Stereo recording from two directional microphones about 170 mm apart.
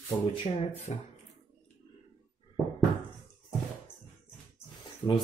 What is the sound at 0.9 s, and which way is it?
Speech, 35° left (ahead or behind).